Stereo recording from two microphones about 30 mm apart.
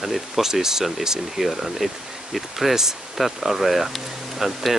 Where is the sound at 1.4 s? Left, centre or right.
Centre.